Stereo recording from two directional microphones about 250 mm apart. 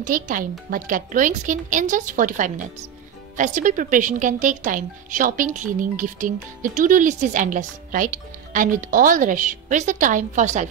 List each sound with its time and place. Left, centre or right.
0.0 s speech: right